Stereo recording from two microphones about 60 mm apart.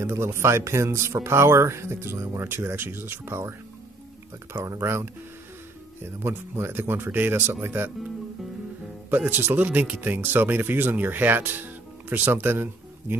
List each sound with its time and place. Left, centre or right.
0.0 s speech: right
4.7 s speech: right
9.1 s speech: right